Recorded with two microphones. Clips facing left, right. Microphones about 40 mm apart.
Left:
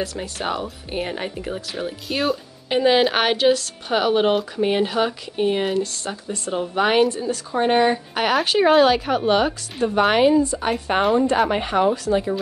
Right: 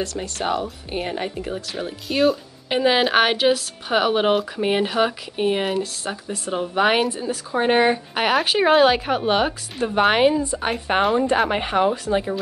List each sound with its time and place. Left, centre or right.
0.0 s speech: centre; by 12.3 s right